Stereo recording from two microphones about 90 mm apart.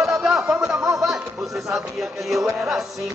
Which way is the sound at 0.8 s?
35° right (ahead or behind).